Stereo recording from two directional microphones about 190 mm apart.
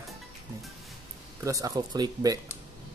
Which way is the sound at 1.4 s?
15° right (ahead or behind).